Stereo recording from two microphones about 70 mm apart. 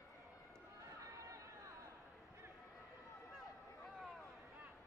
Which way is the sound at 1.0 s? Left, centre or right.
Right.